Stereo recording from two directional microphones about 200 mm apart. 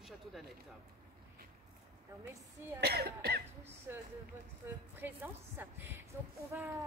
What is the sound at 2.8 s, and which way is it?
Speech, 55° right (ahead or behind).